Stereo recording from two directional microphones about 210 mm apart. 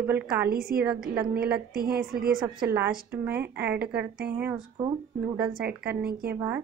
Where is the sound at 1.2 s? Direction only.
50° right (ahead or behind).